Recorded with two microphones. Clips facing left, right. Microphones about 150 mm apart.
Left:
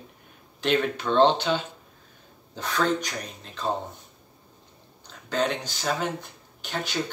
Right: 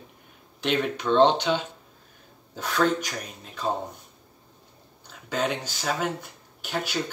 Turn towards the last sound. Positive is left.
turn(degrees=-5)  # may be behind; listen again after turning